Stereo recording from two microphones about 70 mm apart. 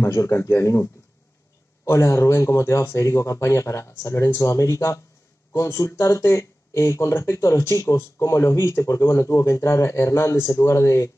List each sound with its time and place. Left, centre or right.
0.0 s speech: left
1.9 s speech: left